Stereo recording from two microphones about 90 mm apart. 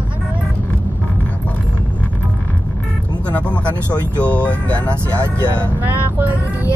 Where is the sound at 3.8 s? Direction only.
30° right (ahead or behind).